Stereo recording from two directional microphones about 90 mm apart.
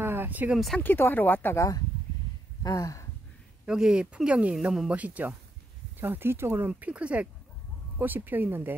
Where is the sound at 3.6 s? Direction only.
10° right (ahead or behind).